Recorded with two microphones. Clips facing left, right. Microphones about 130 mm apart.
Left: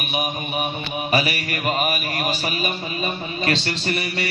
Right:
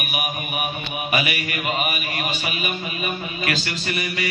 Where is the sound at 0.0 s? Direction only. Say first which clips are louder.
Left 2 dB; 25° left (ahead or behind).